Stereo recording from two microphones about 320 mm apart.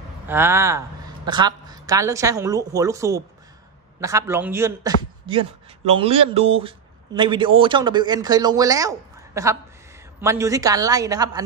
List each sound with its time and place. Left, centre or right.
0.3 s speech: centre